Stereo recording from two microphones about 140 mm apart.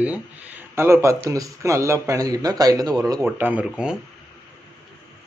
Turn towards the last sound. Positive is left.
turn(degrees=-5)  # may be behind; listen again after turning